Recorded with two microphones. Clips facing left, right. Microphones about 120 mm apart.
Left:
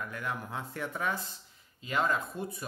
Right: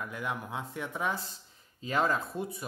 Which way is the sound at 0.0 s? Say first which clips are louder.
Right 1 dB; 15° right (ahead or behind).